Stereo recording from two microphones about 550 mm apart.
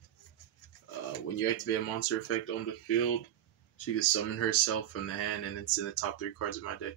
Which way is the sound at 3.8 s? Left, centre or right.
Left.